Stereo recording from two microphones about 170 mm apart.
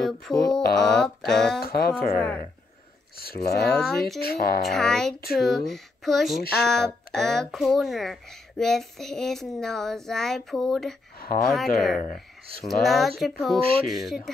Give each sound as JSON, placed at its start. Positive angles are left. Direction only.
{"t": 0.0, "sound": "speech", "side_deg": 5}
{"t": 1.6, "sound": "speech", "side_deg": 65}
{"t": 2.1, "sound": "speech", "side_deg": 10}
{"t": 3.2, "sound": "speech", "side_deg": 65}
{"t": 3.6, "sound": "speech", "side_deg": 5}
{"t": 4.2, "sound": "speech", "side_deg": 60}
{"t": 4.6, "sound": "speech", "side_deg": 0}
{"t": 13.6, "sound": "speech", "side_deg": -35}
{"t": 13.8, "sound": "speech", "side_deg": 0}